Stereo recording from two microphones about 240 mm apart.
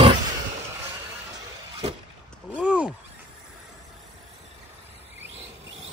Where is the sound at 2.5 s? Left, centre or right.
Centre.